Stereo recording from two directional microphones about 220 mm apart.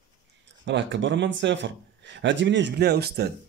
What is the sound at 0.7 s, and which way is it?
A man's voice, 55° right (ahead or behind).